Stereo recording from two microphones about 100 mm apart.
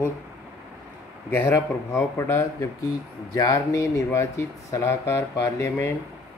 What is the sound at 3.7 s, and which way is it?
Speech, 30° left (ahead or behind).